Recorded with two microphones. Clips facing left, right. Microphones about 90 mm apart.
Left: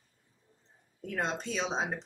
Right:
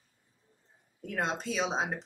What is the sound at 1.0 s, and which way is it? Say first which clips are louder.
Speech: right 1 dB; 5° right (ahead or behind).